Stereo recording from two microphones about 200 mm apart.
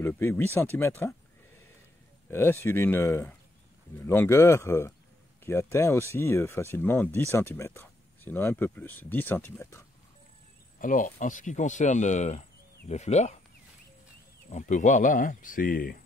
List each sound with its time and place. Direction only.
0.0 s speech: 10° left (ahead or behind)
2.2 s speech: 10° left (ahead or behind)
10.8 s speech: 40° left (ahead or behind)
14.5 s speech: 35° left (ahead or behind)